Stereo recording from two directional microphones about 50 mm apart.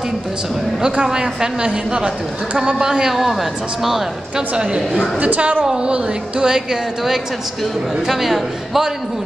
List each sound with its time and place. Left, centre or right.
0.8 s a woman's voice: centre
5.2 s a woman's voice: right; by 8.9 s centre